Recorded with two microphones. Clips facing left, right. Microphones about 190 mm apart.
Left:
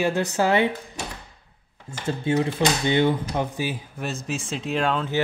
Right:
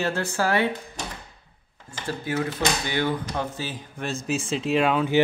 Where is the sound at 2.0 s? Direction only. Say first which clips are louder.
Left 4 dB; 25° left (ahead or behind).